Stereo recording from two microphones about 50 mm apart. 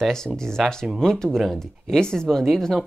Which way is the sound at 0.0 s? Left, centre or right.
Centre.